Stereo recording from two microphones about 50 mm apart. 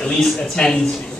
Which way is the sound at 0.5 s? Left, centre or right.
Centre.